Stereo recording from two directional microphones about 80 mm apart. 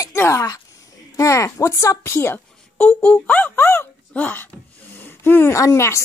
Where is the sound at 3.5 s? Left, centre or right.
Left.